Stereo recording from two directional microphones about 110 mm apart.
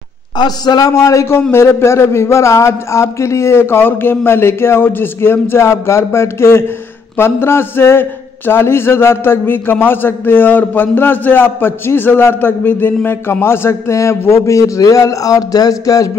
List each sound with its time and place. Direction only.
0.4 s a man's voice: 40° left (ahead or behind)